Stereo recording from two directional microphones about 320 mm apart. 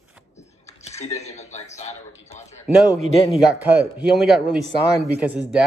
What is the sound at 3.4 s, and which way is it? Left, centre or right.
Speech, centre.